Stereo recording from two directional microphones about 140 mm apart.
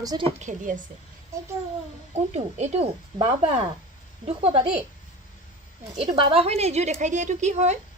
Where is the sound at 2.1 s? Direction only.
50° right (ahead or behind).